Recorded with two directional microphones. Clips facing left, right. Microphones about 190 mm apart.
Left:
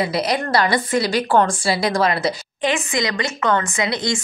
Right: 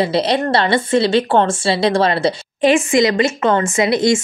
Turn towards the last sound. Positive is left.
turn(degrees=-25)  # may be behind; listen again after turning